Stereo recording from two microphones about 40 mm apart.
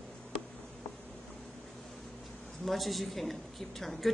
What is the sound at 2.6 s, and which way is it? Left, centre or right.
A woman's voice, centre.